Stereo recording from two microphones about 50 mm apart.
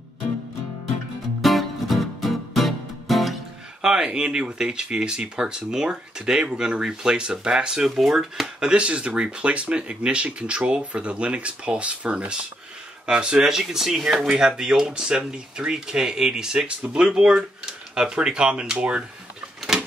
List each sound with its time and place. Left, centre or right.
1.4 s music: centre
3.8 s speech: centre
8.5 s speech: centre